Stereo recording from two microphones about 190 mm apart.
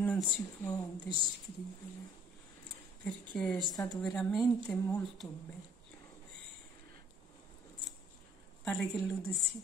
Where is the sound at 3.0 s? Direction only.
5° left (ahead or behind).